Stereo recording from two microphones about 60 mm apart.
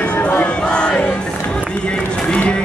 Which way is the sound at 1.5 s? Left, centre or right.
Centre.